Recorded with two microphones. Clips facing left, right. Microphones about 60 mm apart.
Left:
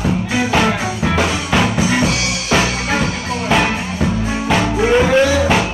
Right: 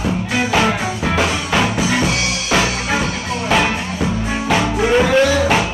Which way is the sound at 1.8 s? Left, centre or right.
Centre.